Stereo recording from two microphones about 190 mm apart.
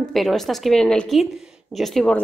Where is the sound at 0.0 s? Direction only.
Centre (ahead or behind).